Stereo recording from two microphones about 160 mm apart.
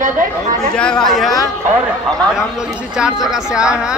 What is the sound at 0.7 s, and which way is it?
Speech, 5° left (ahead or behind).